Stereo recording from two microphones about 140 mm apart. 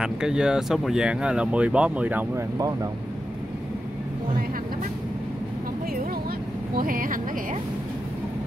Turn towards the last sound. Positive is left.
turn(degrees=-80)